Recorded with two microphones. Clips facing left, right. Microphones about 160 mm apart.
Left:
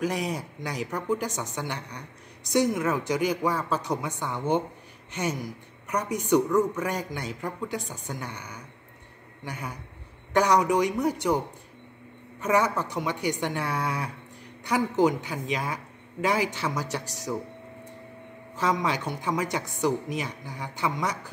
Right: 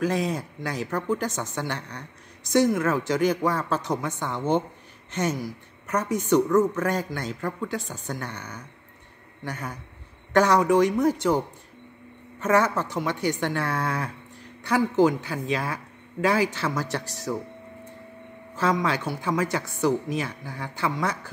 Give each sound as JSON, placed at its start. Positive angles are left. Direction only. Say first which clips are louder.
{"t": 0.0, "sound": "speech", "louder": "right 3 dB", "side_deg": 15}
{"t": 12.4, "sound": "speech", "louder": "right 2 dB", "side_deg": 15}
{"t": 18.6, "sound": "speech", "louder": "right 2 dB", "side_deg": 15}